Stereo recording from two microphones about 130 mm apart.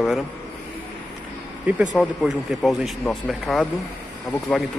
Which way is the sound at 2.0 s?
Centre (ahead or behind).